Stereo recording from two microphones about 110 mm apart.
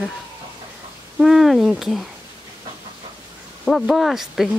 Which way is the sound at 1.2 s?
Centre (ahead or behind).